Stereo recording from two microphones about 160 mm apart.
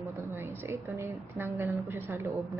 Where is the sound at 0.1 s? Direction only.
15° right (ahead or behind).